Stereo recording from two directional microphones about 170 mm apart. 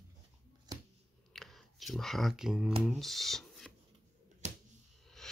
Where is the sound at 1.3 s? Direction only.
Centre (ahead or behind).